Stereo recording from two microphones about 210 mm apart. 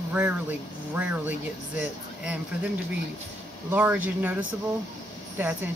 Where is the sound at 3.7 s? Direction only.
10° right (ahead or behind).